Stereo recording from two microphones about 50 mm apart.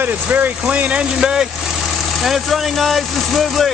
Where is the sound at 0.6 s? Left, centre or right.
Right.